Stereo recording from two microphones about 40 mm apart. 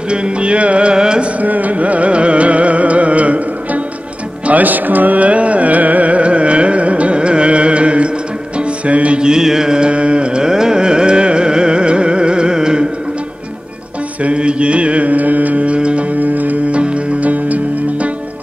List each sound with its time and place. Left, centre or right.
0.1 s music: right
1.4 s music: right
9.2 s carnatic music: centre
14.2 s mantra: right
16.2 s music: right
16.7 s music: right